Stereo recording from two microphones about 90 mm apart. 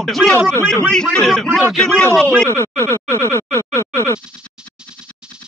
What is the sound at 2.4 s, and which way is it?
Speech, 25° left (ahead or behind).